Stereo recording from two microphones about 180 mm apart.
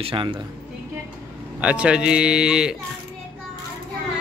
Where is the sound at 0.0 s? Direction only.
30° right (ahead or behind).